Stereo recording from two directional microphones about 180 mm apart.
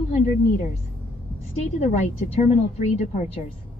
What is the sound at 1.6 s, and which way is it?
A woman's voice, 40° left (ahead or behind).